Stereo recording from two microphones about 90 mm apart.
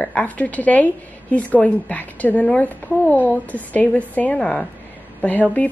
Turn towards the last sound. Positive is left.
turn(degrees=15)  # may be behind; listen again after turning